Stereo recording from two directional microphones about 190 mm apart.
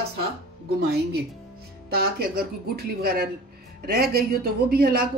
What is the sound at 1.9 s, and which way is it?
A man's voice, 55° right (ahead or behind).